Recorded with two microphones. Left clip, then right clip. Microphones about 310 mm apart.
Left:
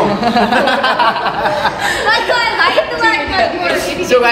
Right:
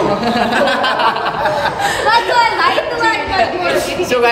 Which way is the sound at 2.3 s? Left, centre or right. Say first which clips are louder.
Even; centre.